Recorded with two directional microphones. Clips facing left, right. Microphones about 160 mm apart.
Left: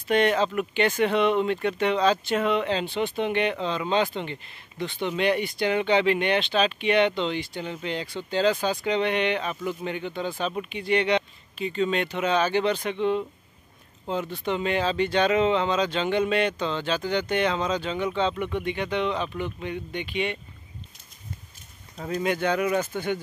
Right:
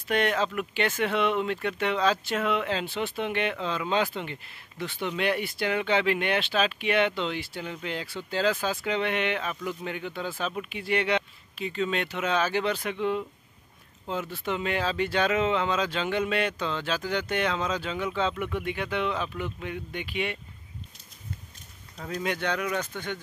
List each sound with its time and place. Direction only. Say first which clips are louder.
0.1 s speech: left 4 dB; centre (ahead or behind)
21.9 s speech: left 4 dB; centre (ahead or behind)